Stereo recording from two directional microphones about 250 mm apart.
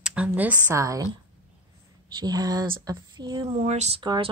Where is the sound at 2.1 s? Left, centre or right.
Centre.